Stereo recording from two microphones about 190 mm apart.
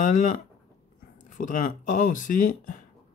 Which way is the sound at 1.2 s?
45° left (ahead or behind).